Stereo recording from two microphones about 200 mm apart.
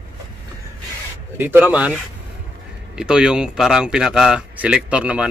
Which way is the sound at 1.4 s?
10° right (ahead or behind).